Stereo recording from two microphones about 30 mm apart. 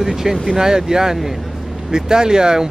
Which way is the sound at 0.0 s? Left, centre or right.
Centre.